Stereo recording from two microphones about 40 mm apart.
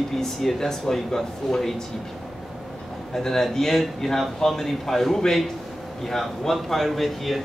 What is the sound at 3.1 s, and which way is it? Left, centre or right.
A man's voice, centre.